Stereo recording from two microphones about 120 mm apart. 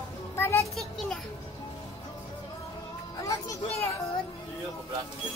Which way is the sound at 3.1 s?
25° left (ahead or behind).